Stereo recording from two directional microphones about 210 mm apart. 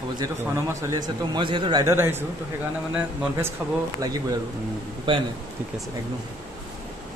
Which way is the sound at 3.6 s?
5° right (ahead or behind).